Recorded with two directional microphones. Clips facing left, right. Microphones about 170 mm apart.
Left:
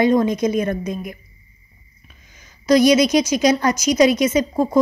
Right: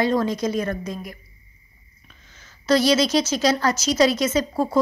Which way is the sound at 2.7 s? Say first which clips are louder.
Left 5 dB; 15° left (ahead or behind).